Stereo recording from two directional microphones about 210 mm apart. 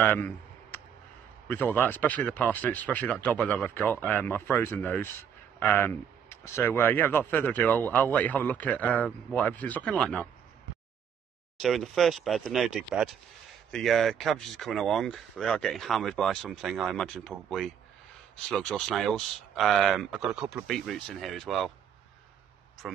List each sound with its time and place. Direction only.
0.0 s clicking: 10° left (ahead or behind)
1.5 s speech: 10° left (ahead or behind)
11.6 s speech: centre (ahead or behind)